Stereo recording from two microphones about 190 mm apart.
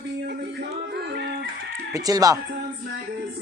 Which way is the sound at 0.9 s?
60° right (ahead or behind).